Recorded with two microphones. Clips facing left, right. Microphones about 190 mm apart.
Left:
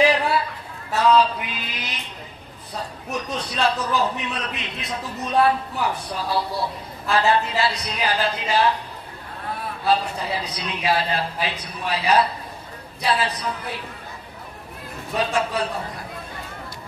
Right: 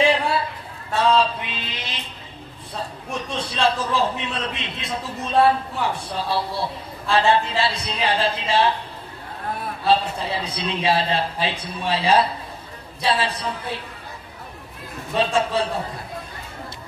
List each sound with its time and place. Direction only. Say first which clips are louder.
0.0 s a sound: left 1 dB; 30° right (ahead or behind)
0.9 s a man's voice: left 1 dB; 25° right (ahead or behind)
3.1 s a man's voice: left 1 dB; 30° right (ahead or behind)
9.8 s a man's voice: right 1 dB; 25° right (ahead or behind)
15.1 s a man's voice: right 2 dB; 25° right (ahead or behind)